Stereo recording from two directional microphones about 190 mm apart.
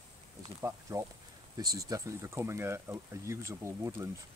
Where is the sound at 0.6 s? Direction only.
15° right (ahead or behind).